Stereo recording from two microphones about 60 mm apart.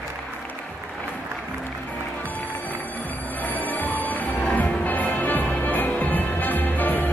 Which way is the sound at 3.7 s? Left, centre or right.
Left.